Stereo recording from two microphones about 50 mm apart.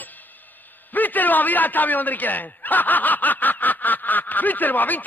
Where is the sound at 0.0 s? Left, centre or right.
Left.